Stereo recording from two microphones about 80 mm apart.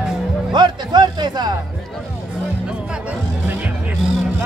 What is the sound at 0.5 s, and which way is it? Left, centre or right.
Music, right.